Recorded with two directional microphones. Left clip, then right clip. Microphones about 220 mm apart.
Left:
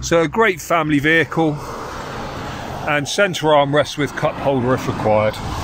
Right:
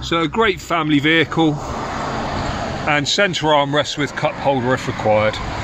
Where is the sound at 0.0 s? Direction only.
20° left (ahead or behind).